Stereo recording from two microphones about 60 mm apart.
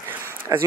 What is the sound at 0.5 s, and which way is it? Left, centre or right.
Speech, right.